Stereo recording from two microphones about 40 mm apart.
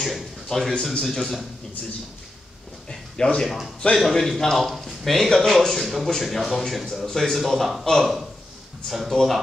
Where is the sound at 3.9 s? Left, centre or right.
Centre.